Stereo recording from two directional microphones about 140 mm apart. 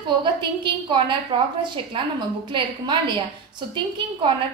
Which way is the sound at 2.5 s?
35° right (ahead or behind).